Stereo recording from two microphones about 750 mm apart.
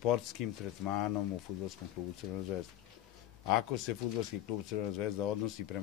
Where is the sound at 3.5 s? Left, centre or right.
Left.